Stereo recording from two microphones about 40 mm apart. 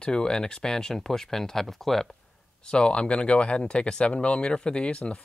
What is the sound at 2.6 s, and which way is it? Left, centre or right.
Speech, left.